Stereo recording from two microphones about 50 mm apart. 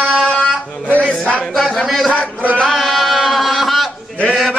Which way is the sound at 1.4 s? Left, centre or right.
Centre.